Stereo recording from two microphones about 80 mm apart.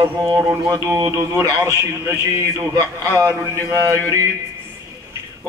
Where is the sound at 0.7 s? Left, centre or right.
Right.